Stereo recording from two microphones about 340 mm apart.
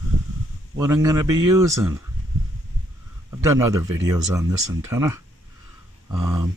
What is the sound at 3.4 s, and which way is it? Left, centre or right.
Speech, centre.